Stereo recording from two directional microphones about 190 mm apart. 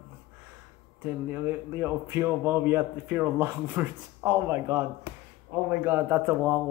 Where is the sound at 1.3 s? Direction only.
10° right (ahead or behind).